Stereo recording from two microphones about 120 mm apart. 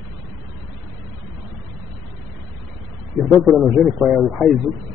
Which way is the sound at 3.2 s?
Centre (ahead or behind).